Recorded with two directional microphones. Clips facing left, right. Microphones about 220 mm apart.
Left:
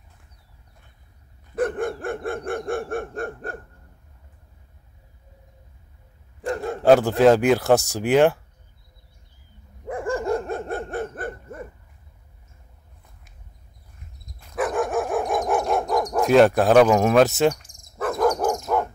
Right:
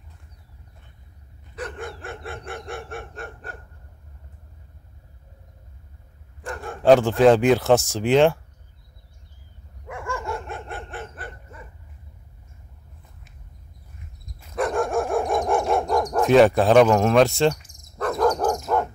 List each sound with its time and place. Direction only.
1.5 s dog: 50° left (ahead or behind)
6.5 s a sound: 25° left (ahead or behind)
6.8 s speech: 5° left (ahead or behind)
9.8 s dog: 35° left (ahead or behind)
14.4 s dog: 5° left (ahead or behind)
16.2 s cricket: centre (ahead or behind)